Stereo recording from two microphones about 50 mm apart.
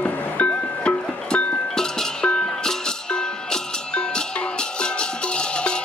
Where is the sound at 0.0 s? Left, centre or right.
Left.